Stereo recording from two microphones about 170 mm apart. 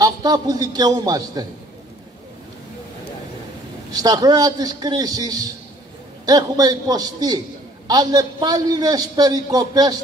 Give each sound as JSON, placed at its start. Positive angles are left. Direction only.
{"t": 0.0, "sound": "a man's voice", "side_deg": -20}
{"t": 3.9, "sound": "a man's voice", "side_deg": -20}